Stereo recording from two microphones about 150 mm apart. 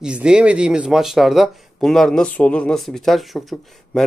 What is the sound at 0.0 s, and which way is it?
Speech, 5° right (ahead or behind).